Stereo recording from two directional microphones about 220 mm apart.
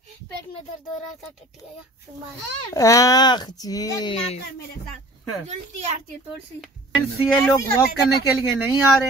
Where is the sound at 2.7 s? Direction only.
15° left (ahead or behind).